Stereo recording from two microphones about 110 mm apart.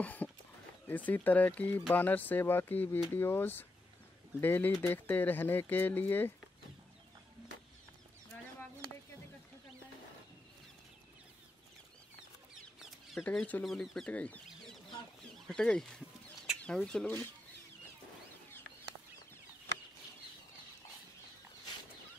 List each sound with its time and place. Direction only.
0.0 s a sound: 15° left (ahead or behind)
0.8 s speech: 15° left (ahead or behind)
13.2 s speech: 10° left (ahead or behind)